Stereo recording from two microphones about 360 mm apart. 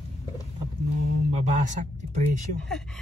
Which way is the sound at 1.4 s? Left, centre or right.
Centre.